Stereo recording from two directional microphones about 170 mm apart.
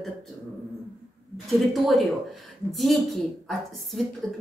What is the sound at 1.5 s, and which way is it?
A woman's voice, centre (ahead or behind).